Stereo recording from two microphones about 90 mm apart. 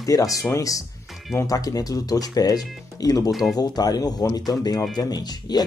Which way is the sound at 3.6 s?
45° left (ahead or behind).